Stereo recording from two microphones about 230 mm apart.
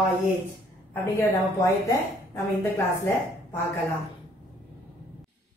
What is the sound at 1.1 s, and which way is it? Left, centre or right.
Speech, centre.